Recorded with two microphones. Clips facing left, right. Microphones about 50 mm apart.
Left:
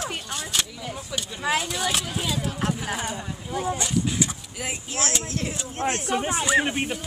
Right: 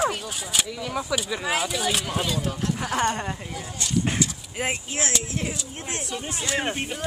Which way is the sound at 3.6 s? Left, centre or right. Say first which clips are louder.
Left 8 dB; left.